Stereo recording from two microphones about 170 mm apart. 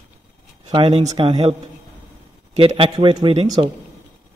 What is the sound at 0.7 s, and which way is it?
Speech, 25° right (ahead or behind).